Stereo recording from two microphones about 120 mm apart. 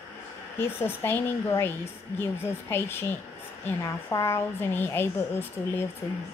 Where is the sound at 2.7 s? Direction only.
20° left (ahead or behind).